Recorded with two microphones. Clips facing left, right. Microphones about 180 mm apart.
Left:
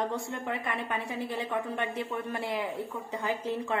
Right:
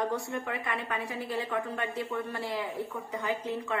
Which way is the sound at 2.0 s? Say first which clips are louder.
Even; 20° left (ahead or behind).